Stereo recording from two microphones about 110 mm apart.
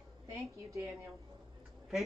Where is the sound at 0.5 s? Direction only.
30° right (ahead or behind).